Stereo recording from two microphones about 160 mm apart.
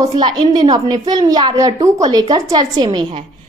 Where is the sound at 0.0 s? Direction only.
25° right (ahead or behind).